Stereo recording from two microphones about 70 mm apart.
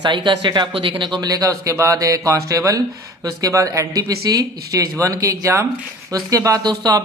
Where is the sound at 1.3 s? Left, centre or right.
Right.